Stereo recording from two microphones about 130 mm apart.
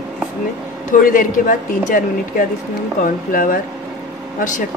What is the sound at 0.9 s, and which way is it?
Speech, 90° left.